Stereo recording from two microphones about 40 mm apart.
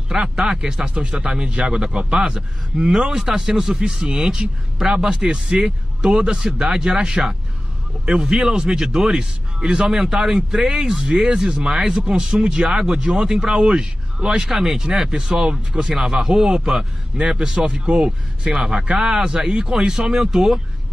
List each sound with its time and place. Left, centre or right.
0.4 s speech: centre
8.0 s speech: right
18.5 s speech: centre